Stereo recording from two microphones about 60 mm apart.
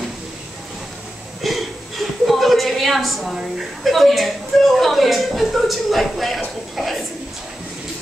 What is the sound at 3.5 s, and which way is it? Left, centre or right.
A woman's voice, centre.